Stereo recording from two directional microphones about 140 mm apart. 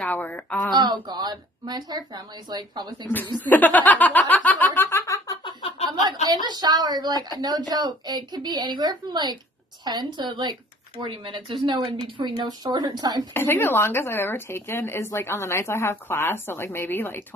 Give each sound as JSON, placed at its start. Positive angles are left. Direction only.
{"t": 0.0, "sound": "speech", "side_deg": 10}
{"t": 0.7, "sound": "speech", "side_deg": -30}
{"t": 3.4, "sound": "snicker", "side_deg": 10}
{"t": 5.4, "sound": "a sound", "side_deg": 40}
{"t": 6.2, "sound": "a woman's voice", "side_deg": -30}
{"t": 13.3, "sound": "speech", "side_deg": 15}